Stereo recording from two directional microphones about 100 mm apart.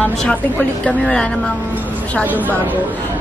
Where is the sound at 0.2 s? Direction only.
10° left (ahead or behind).